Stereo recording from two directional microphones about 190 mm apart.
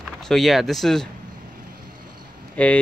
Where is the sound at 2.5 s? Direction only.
5° left (ahead or behind).